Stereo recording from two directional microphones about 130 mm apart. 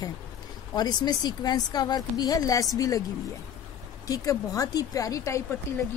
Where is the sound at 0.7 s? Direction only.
30° left (ahead or behind).